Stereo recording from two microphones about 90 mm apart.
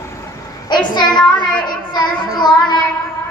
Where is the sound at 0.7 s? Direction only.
55° left (ahead or behind).